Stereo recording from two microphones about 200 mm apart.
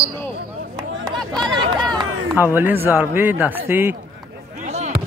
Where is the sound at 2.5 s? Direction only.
10° right (ahead or behind).